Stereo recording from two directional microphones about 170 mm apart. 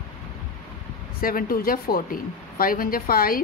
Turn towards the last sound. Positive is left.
turn(degrees=60)  # may be behind; listen again after turning